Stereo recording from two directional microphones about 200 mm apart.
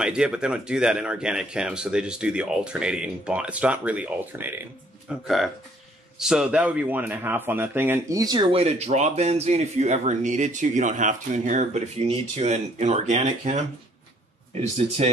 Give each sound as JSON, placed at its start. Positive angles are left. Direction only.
{"t": 0.0, "sound": "speech", "side_deg": -5}
{"t": 15.0, "sound": "speech", "side_deg": -35}